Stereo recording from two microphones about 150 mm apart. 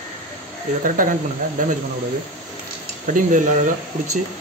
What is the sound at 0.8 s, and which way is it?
Speech, 60° right (ahead or behind).